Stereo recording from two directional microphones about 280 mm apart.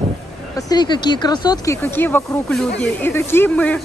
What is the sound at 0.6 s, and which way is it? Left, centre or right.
Speech, centre.